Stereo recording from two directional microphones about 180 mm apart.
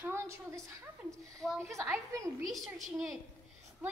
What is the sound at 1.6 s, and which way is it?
Speech, 15° right (ahead or behind).